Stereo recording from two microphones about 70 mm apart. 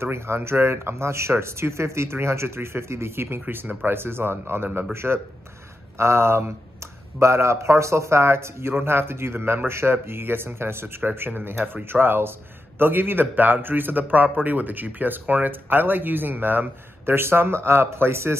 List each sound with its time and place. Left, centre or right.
0.0 s a man's voice: right